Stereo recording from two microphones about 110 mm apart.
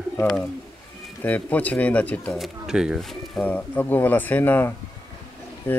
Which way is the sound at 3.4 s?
15° left (ahead or behind).